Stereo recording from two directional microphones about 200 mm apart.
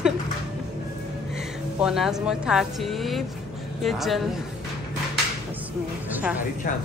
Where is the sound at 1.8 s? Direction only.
Centre (ahead or behind).